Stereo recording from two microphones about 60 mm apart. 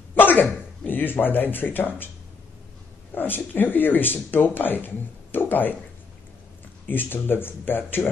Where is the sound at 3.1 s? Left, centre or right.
Left.